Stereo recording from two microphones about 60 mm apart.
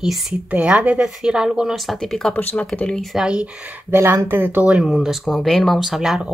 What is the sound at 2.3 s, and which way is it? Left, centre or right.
Speech, left.